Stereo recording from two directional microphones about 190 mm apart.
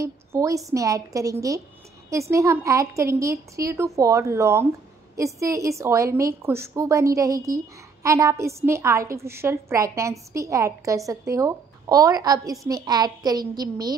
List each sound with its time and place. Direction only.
0.0 s a woman's voice: 15° right (ahead or behind)